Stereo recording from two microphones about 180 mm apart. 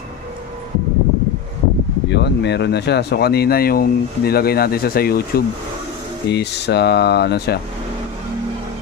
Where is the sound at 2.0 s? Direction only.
70° left (ahead or behind).